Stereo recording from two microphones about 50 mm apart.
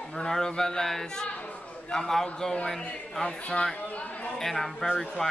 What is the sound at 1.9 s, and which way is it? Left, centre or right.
A man's voice, centre.